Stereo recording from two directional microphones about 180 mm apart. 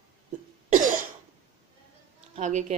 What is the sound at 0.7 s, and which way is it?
Cough, 45° right (ahead or behind).